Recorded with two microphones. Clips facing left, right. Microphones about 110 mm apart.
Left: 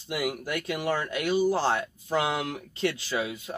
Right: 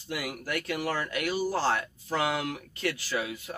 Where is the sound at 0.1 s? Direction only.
25° left (ahead or behind).